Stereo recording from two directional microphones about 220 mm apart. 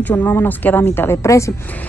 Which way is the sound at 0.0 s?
10° left (ahead or behind).